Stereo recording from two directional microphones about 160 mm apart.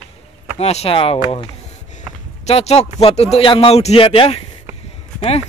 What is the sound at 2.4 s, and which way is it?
Speech, 40° left (ahead or behind).